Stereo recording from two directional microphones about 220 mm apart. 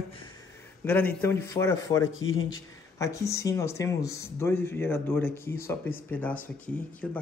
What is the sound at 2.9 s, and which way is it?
Speech, 15° left (ahead or behind).